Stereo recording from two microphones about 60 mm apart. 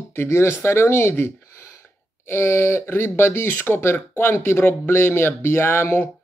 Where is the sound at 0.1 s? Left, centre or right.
Left.